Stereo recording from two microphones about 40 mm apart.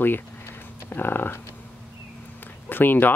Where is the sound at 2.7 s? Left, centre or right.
Left.